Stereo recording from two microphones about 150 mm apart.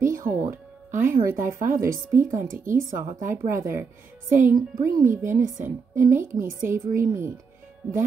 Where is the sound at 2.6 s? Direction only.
60° right (ahead or behind).